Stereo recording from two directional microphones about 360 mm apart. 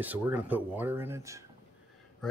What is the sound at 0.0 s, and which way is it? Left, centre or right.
Speech, centre.